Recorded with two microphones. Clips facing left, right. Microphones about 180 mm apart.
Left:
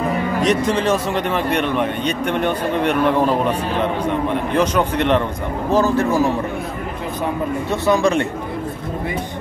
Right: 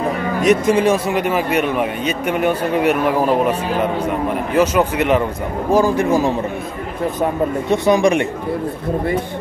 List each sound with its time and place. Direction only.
0.4 s speech: 10° right (ahead or behind)
7.7 s speech: 15° right (ahead or behind)